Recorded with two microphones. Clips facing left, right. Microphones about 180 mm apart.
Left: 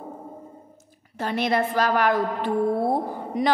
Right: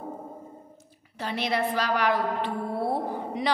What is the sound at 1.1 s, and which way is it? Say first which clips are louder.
A woman's voice: left 5 dB; 50° left (ahead or behind).